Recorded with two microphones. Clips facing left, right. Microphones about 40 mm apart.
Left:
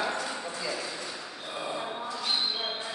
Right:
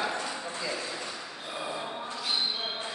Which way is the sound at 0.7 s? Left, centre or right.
Right.